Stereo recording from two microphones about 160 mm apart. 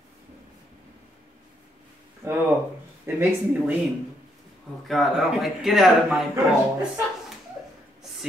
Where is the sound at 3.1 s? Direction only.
15° right (ahead or behind).